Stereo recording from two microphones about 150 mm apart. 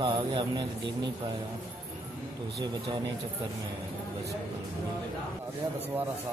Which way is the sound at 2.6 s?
25° right (ahead or behind).